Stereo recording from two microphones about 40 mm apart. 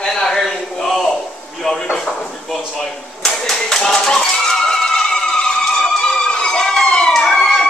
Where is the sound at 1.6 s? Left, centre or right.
Centre.